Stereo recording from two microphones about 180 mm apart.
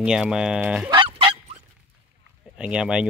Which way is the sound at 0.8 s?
25° right (ahead or behind).